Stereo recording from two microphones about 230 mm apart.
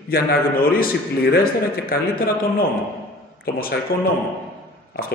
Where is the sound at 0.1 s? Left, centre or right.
Left.